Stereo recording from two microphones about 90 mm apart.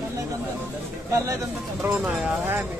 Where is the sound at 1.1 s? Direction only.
35° right (ahead or behind).